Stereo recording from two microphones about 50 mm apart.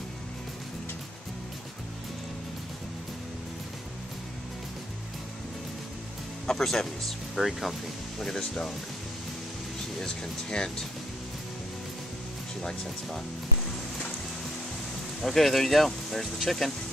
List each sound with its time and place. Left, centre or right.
6.4 s speech: centre
8.2 s speech: centre
10.0 s speech: centre
15.2 s speech: centre